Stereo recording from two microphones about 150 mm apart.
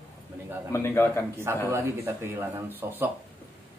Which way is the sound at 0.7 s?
20° left (ahead or behind).